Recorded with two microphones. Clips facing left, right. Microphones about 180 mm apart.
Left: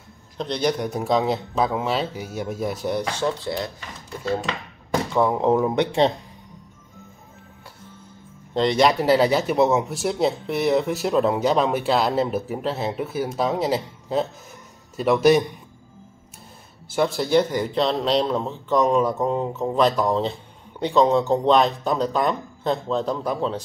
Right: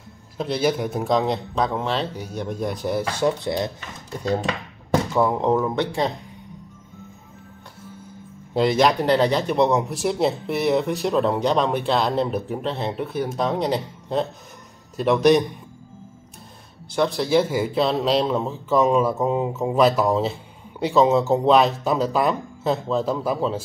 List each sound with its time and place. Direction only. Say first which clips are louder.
0.4 s speech: right 1 dB; 5° right (ahead or behind)
3.2 s speech: right 3 dB; 15° right (ahead or behind)
5.1 s speech: left 2 dB; centre (ahead or behind)
5.6 s speech: left 3 dB; 20° left (ahead or behind)
8.5 s speech: even; centre (ahead or behind)
16.9 s speech: even; 5° left (ahead or behind)